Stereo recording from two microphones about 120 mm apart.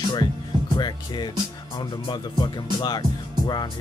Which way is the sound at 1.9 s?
40° left (ahead or behind).